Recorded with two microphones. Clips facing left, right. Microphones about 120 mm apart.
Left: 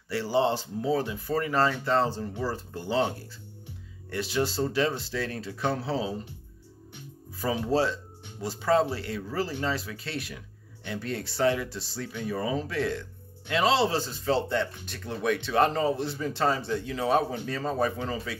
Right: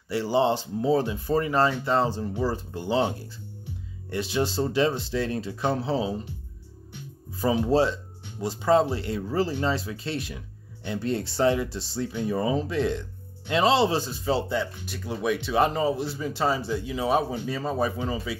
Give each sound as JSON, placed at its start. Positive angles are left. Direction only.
{"t": 0.1, "sound": "speech", "side_deg": -20}
{"t": 7.4, "sound": "speech", "side_deg": -20}